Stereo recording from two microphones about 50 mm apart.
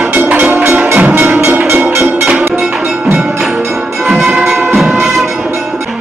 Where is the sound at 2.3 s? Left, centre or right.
Right.